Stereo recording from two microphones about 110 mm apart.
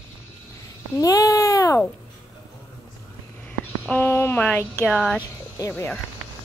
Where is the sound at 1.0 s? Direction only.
35° left (ahead or behind).